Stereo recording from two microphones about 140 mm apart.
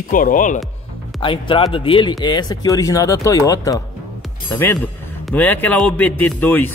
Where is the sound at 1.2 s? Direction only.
40° left (ahead or behind).